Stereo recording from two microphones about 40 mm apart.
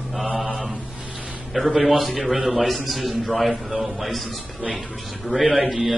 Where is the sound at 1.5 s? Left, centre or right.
Centre.